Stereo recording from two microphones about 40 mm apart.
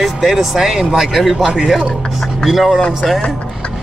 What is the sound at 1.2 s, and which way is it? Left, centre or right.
Speech, centre.